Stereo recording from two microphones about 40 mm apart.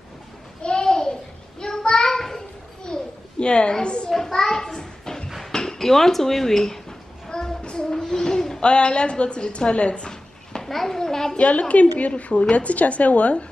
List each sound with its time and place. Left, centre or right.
0.6 s a sound: left
3.8 s children playing: left
4.1 s children playing: centre
5.5 s speech: centre
7.2 s child singing: centre
7.9 s a sound: centre
8.5 s a woman's voice: left
10.6 s a child's voice: centre
11.3 s a woman's voice: left